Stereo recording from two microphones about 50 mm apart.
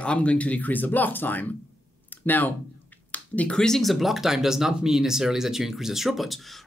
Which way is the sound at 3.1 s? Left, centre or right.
Left.